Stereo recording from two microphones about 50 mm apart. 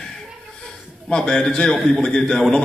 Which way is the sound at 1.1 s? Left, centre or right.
Centre.